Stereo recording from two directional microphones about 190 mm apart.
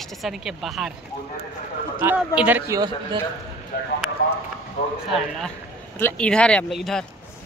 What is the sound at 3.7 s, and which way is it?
Speech, 50° left (ahead or behind).